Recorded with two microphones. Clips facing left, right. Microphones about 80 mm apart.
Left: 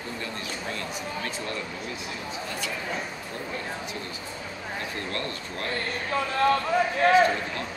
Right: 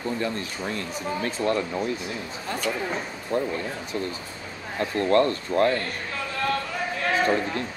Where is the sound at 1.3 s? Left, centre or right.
Right.